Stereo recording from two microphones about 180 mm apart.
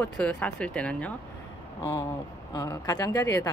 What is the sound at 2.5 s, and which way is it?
Speech, 20° left (ahead or behind).